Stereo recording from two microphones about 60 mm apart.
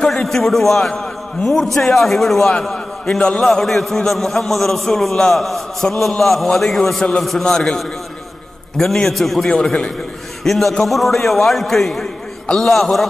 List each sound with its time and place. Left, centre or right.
0.0 s a man's voice: centre
3.4 s a man's voice: centre
7.0 s a man's voice: centre